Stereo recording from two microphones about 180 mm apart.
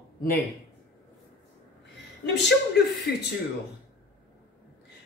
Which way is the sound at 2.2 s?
75° left (ahead or behind).